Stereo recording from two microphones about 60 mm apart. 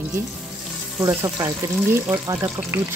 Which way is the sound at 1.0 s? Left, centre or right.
Right.